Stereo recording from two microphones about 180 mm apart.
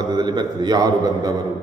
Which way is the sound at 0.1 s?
25° right (ahead or behind).